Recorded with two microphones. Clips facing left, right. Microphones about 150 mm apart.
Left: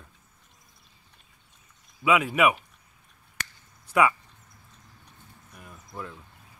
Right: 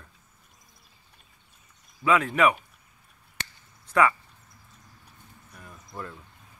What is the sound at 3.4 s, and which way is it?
Chop, 25° right (ahead or behind).